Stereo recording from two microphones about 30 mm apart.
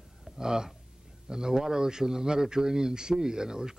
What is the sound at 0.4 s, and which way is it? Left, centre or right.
Speech, right.